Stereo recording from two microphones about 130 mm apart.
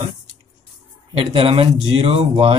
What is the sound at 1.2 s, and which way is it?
Speech, 45° right (ahead or behind).